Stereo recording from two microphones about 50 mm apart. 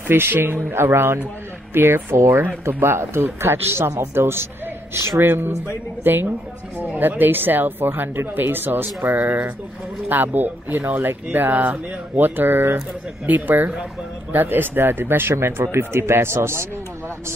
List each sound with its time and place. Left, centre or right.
0.1 s speech: right
2.1 s speech: right
2.8 s speech: right
15.3 s speech: right